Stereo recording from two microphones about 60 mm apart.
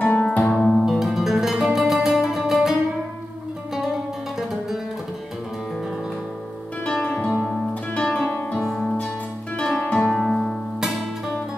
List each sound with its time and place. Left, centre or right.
0.1 s music: left
0.5 s music: centre
0.8 s music: centre
6.9 s music: centre
9.6 s music: centre
10.1 s music: centre